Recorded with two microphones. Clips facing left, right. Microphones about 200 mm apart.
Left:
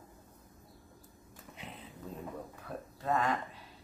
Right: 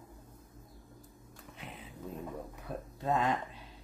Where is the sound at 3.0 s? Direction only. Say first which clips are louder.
Right 1 dB; 20° right (ahead or behind).